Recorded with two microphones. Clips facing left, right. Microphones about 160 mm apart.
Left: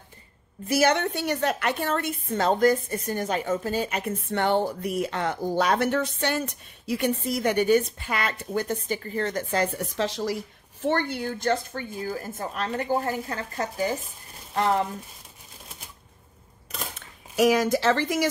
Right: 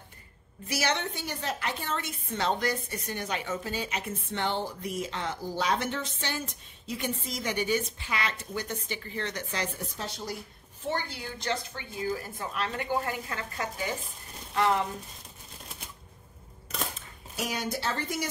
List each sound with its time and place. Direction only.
0.7 s a woman's voice: 50° left (ahead or behind)
9.8 s a woman's voice: 90° left; by 14.9 s 40° left (ahead or behind)
17.4 s speech: 90° left